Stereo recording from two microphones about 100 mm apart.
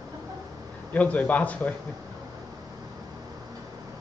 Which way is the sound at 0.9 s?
15° left (ahead or behind).